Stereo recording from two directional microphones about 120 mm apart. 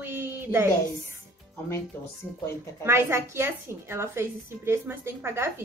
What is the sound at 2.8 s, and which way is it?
A woman's voice, 20° right (ahead or behind).